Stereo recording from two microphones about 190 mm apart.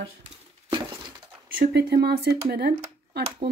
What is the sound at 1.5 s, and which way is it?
Speech, 60° right (ahead or behind).